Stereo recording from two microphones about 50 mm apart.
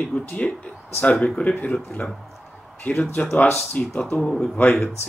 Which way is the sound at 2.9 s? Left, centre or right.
Left.